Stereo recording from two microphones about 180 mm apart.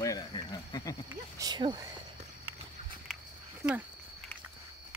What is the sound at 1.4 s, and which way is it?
Speech, 25° right (ahead or behind).